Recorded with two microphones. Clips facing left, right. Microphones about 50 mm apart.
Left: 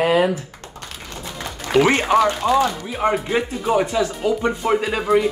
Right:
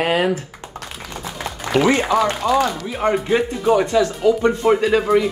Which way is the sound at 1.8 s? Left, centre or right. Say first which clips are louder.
Even; left.